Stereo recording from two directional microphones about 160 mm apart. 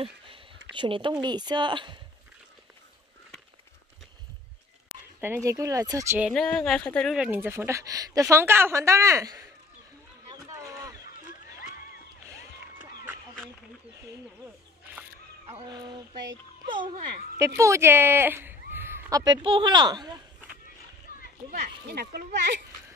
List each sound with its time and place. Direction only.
0.7 s speech: 30° right (ahead or behind)
5.2 s speech: 15° right (ahead or behind)
6.3 s speech: 5° left (ahead or behind)
7.2 s a woman's voice: 10° right (ahead or behind)
10.3 s a sound: 20° right (ahead or behind)
15.5 s speech: 25° right (ahead or behind)
17.6 s speech: 20° right (ahead or behind)
21.1 s splash: 60° left (ahead or behind)
21.5 s speech: 65° right (ahead or behind)